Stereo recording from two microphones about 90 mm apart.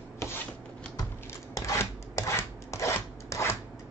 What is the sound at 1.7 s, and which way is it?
Chopping, 35° left (ahead or behind).